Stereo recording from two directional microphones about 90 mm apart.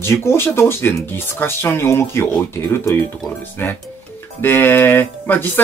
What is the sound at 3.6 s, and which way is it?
Speech, 25° left (ahead or behind).